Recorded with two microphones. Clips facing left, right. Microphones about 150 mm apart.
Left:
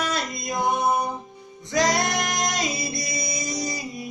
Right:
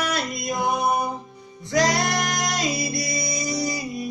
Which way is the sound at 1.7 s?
20° left (ahead or behind).